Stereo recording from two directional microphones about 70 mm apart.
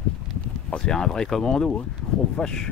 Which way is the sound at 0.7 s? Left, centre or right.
Centre.